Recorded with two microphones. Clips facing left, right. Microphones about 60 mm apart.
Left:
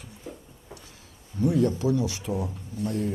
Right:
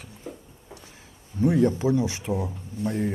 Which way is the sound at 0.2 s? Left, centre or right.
Centre.